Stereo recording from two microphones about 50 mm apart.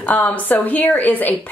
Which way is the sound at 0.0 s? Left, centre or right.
Left.